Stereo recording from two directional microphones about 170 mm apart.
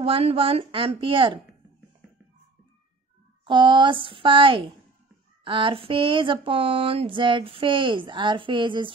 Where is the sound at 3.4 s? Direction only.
30° right (ahead or behind).